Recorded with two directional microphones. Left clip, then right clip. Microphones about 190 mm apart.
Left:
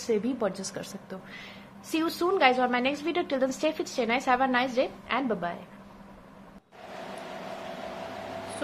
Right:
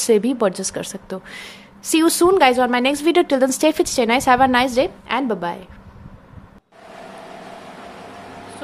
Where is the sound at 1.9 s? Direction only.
55° right (ahead or behind).